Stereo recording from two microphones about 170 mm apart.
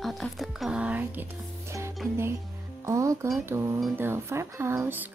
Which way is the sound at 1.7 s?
15° right (ahead or behind).